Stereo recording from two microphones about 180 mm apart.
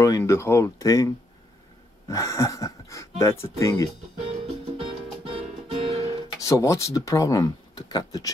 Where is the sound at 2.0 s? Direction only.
15° left (ahead or behind).